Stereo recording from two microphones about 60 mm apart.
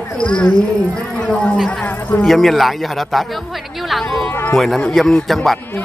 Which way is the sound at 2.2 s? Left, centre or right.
Centre.